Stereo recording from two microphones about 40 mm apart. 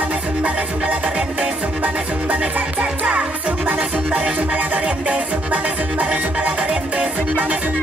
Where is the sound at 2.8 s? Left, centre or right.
Right.